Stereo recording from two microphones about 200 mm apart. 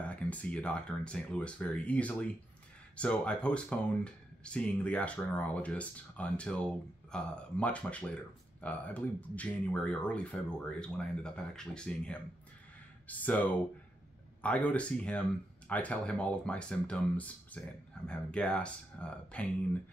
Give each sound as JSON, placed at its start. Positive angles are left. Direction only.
{"t": 0.0, "sound": "speech", "side_deg": 5}
{"t": 14.4, "sound": "speech", "side_deg": 5}